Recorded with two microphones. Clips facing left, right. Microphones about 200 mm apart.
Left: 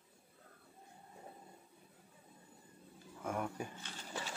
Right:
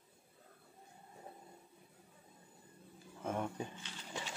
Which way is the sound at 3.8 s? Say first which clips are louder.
Left 1 dB; 45° left (ahead or behind).